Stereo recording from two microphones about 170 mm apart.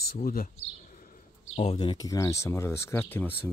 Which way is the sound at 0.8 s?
50° left (ahead or behind).